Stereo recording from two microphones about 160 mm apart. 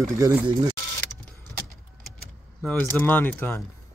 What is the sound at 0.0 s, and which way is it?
Speech, 15° right (ahead or behind).